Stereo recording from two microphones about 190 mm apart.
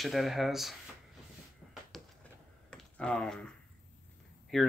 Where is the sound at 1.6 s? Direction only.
5° right (ahead or behind).